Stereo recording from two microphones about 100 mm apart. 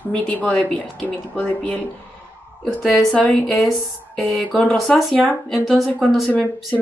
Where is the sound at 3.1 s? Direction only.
15° left (ahead or behind).